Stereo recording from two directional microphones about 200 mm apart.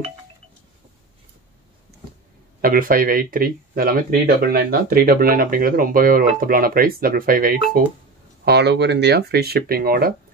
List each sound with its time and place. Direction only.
2.6 s speech: 45° right (ahead or behind)
8.5 s speech: 55° right (ahead or behind)